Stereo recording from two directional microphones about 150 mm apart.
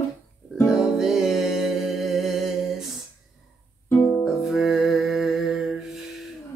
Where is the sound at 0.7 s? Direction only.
5° right (ahead or behind).